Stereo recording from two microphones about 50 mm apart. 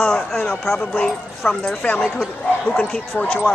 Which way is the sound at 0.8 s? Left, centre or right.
Centre.